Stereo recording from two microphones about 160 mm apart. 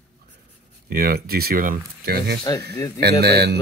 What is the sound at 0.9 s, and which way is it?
Speech, 70° right (ahead or behind).